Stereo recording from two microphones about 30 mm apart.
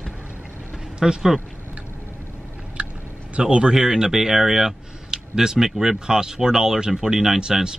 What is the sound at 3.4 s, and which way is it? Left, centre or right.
Speech, right.